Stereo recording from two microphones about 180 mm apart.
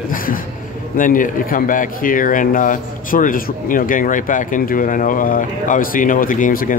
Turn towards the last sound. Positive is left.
turn(degrees=50)  # may be behind; listen again after turning